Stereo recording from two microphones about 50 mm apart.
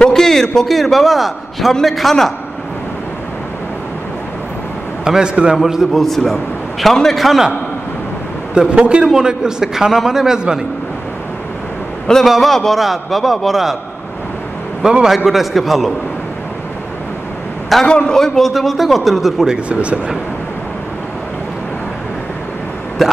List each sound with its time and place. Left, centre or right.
0.0 s a man's voice: centre
5.0 s a man's voice: centre
5.6 s a man's voice: centre
5.9 s a man's voice: centre
8.5 s a man's voice: right
12.3 s a man's voice: centre
14.8 s a man's voice: centre
15.1 s a man's voice: centre
17.8 s a man's voice: centre
19.4 s speech: centre